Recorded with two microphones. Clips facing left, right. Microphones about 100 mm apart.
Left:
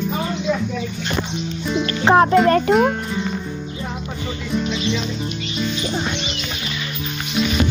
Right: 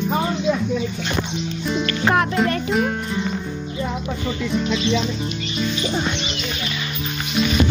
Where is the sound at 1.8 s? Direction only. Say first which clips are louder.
Left 6 dB; 25° left (ahead or behind).